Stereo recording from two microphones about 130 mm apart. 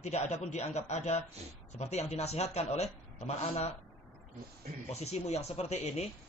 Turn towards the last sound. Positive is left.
turn(degrees=55)  # may be behind; listen again after turning